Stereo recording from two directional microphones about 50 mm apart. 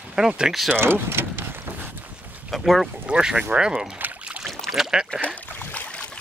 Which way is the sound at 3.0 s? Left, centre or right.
Right.